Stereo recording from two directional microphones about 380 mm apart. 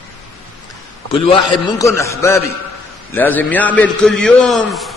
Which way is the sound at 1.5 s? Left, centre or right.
Centre.